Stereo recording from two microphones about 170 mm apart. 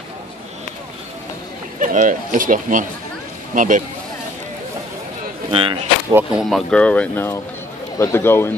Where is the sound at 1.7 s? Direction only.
50° right (ahead or behind).